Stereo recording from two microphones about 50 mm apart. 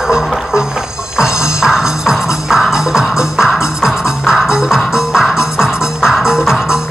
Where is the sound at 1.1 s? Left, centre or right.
Centre.